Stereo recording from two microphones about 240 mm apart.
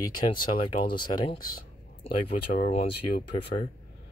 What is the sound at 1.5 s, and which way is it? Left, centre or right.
Speech, left.